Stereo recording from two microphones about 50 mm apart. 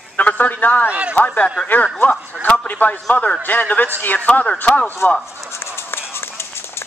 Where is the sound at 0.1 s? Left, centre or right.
Left.